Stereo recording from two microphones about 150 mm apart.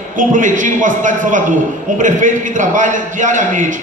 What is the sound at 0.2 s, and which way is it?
A man's voice, 60° right (ahead or behind).